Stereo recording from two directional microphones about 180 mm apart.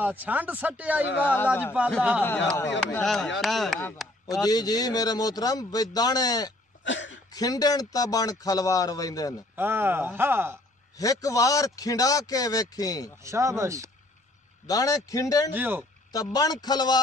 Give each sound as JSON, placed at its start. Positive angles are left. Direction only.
{"t": 0.0, "sound": "speech", "side_deg": -10}
{"t": 1.2, "sound": "a man's voice", "side_deg": 10}
{"t": 2.9, "sound": "chopping", "side_deg": 5}
{"t": 4.3, "sound": "a man's voice", "side_deg": 20}
{"t": 6.8, "sound": "cough", "side_deg": 90}
{"t": 7.2, "sound": "a man's voice", "side_deg": 20}
{"t": 9.6, "sound": "speech", "side_deg": -10}
{"t": 11.0, "sound": "a man's voice", "side_deg": 20}
{"t": 13.2, "sound": "speech", "side_deg": -15}
{"t": 14.7, "sound": "a man's voice", "side_deg": 20}
{"t": 15.5, "sound": "speech", "side_deg": -10}
{"t": 16.1, "sound": "a man's voice", "side_deg": 20}